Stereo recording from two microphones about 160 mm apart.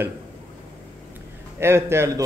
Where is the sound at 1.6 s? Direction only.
15° right (ahead or behind).